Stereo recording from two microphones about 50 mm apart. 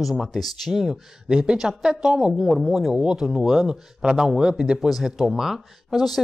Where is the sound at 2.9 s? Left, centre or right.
Centre.